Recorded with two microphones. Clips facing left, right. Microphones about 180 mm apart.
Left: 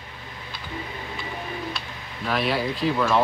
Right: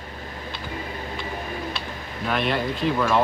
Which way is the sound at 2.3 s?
5° left (ahead or behind).